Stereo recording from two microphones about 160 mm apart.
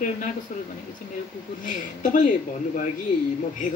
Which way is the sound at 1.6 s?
55° left (ahead or behind).